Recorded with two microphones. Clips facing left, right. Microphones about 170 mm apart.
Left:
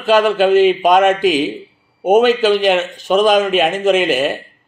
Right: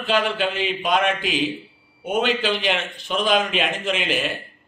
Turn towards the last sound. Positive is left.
turn(degrees=45)  # may be behind; listen again after turning